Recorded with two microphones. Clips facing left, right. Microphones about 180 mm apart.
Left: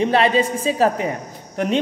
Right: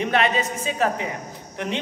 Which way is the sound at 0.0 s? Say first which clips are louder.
Left 5 dB; 30° left (ahead or behind).